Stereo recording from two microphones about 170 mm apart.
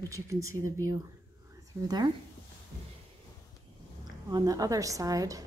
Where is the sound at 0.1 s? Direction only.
15° right (ahead or behind).